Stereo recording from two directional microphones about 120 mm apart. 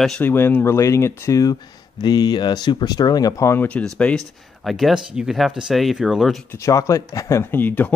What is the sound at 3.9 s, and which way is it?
Speech, 5° left (ahead or behind).